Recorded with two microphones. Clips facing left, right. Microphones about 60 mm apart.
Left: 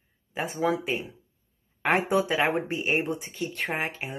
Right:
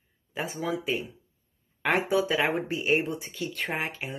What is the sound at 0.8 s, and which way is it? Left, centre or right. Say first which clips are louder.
Speech: even; left.